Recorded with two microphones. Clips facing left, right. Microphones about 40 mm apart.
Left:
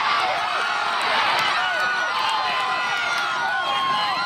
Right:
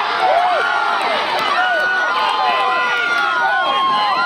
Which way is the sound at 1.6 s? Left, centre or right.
Centre.